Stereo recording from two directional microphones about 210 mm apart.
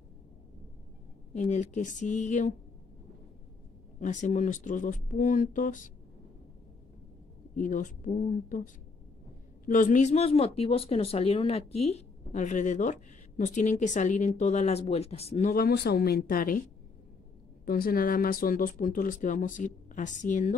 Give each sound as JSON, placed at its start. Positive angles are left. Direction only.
{"t": 1.3, "sound": "speech", "side_deg": 35}
{"t": 4.0, "sound": "speech", "side_deg": 35}
{"t": 7.5, "sound": "speech", "side_deg": 40}
{"t": 9.7, "sound": "speech", "side_deg": 40}
{"t": 15.5, "sound": "speech", "side_deg": 50}
{"t": 17.6, "sound": "speech", "side_deg": 45}